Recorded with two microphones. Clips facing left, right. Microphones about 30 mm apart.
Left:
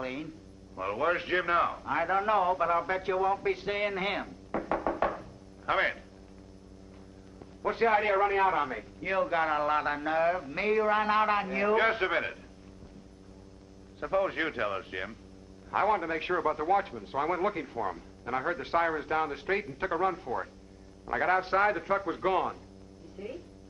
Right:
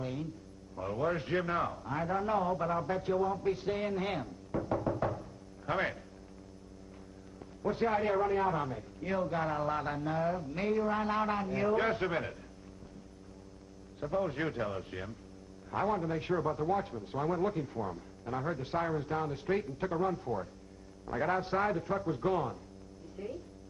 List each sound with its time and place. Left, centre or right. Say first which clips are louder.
0.0 s a man's voice: left 2 dB; left
0.7 s a man's voice: left 4 dB; left
1.0 s a man's voice: left 4 dB; left
4.5 s music: left 2 dB; left
5.7 s a man's voice: left 5 dB; left
7.6 s a man's voice: left 5 dB; left
10.5 s a man's voice: left 5 dB; left
14.0 s a man's voice: left 5 dB; left
14.3 s a man's voice: left 4 dB; left
16.9 s a man's voice: left 3 dB; left
17.2 s a man's voice: left 3 dB; left
22.0 s a man's voice: left 3 dB; left
23.2 s a woman's voice: left 1 dB; centre